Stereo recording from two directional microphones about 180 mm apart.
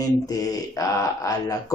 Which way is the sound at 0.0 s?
20° left (ahead or behind).